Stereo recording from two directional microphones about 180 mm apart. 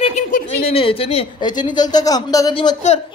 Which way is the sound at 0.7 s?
30° left (ahead or behind).